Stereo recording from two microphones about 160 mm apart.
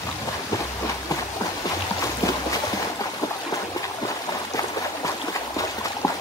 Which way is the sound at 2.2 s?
20° left (ahead or behind).